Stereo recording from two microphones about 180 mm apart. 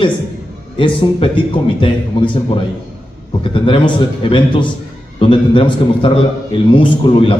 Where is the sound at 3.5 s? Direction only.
30° left (ahead or behind).